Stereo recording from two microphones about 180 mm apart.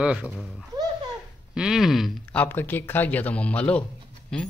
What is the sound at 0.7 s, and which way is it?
Babbling, 20° right (ahead or behind).